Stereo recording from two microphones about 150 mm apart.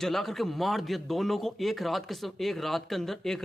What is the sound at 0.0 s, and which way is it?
A man's voice, centre (ahead or behind).